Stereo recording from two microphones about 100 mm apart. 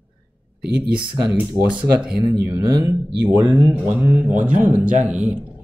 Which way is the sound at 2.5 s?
25° right (ahead or behind).